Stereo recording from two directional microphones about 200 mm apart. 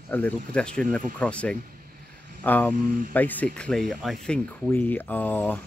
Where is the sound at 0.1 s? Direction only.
5° left (ahead or behind).